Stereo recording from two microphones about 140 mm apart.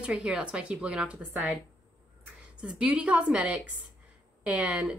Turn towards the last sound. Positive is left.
turn(degrees=-5)  # may be behind; listen again after turning